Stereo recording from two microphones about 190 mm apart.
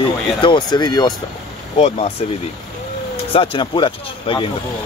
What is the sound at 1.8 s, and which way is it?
Speech, 35° left (ahead or behind).